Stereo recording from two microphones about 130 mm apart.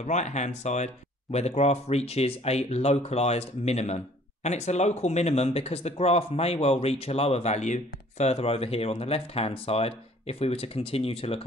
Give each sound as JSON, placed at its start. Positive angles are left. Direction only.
{"t": 0.0, "sound": "speech", "side_deg": 65}